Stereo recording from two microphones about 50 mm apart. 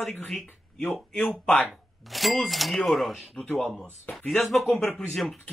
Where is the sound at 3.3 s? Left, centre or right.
Left.